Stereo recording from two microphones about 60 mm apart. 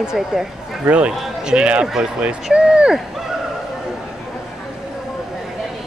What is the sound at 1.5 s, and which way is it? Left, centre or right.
Speech, centre.